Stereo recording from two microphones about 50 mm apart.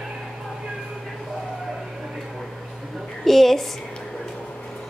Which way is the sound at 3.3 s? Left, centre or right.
Centre.